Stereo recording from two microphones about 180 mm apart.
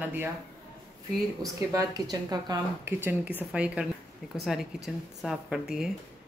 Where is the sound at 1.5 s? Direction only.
20° right (ahead or behind).